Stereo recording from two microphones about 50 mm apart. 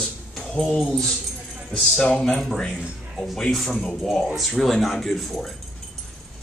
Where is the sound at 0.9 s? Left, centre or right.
Centre.